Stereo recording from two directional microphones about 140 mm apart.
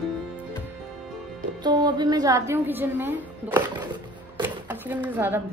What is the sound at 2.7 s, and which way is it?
Speech, 15° right (ahead or behind).